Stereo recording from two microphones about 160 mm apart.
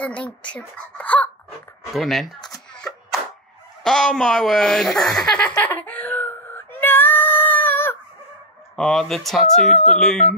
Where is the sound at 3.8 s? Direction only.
5° left (ahead or behind).